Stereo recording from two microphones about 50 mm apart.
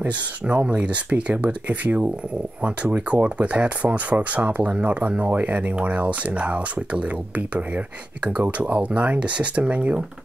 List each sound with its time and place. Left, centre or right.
0.1 s speech: right